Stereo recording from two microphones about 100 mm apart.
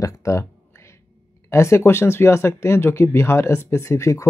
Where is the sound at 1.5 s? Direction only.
30° left (ahead or behind).